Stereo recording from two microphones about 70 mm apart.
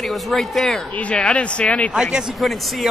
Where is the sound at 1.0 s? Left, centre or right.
Centre.